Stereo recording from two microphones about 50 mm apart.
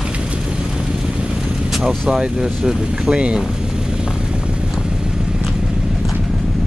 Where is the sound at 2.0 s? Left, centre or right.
Centre.